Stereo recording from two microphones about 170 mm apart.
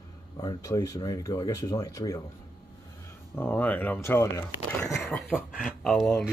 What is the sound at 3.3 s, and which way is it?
Speech, 10° left (ahead or behind).